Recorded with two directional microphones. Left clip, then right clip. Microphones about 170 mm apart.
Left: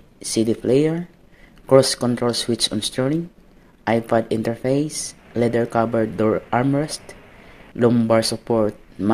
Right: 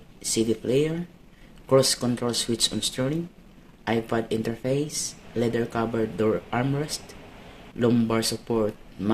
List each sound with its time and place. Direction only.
0.2 s speech: 45° left (ahead or behind)